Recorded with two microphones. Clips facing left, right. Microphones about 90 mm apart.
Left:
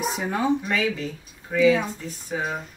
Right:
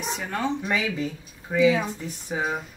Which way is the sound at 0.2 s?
10° left (ahead or behind).